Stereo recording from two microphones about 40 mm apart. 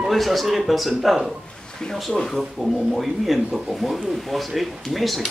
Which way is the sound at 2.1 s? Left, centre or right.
Centre.